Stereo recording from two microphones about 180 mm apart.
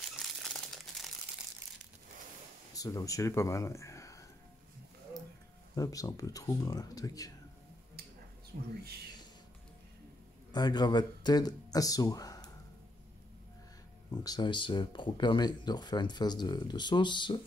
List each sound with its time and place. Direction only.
0.1 s crumpling: centre (ahead or behind)
2.7 s speech: 20° left (ahead or behind)
5.8 s speech: 20° left (ahead or behind)
8.5 s speech: 65° right (ahead or behind)
10.5 s speech: 25° left (ahead or behind)
14.2 s speech: 25° left (ahead or behind)